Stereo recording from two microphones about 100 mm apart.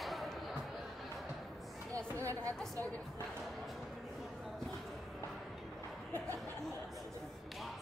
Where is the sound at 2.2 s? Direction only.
30° right (ahead or behind).